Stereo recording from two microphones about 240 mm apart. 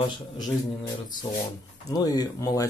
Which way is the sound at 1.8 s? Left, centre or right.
Centre.